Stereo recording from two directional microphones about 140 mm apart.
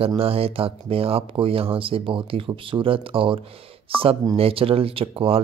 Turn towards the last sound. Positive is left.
turn(degrees=-40)  # may be behind; listen again after turning